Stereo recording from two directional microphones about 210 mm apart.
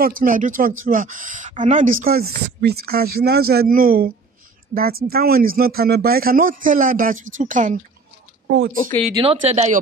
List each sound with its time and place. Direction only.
0.0 s a man's voice: 40° right (ahead or behind)
8.5 s speech: 50° right (ahead or behind)
9.1 s speech: 25° right (ahead or behind)